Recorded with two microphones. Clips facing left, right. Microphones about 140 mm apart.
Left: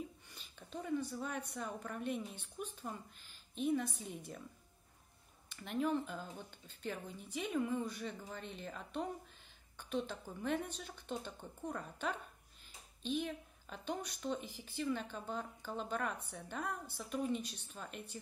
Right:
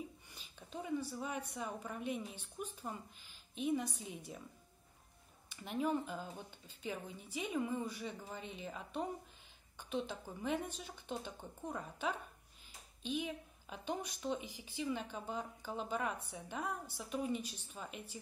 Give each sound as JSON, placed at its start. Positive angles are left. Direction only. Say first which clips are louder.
{"t": 0.6, "sound": "a woman's voice", "louder": "left 1 dB", "side_deg": -10}
{"t": 4.0, "sound": "a woman's voice", "louder": "left 1 dB", "side_deg": 45}
{"t": 5.6, "sound": "a woman's voice", "louder": "left 1 dB", "side_deg": -10}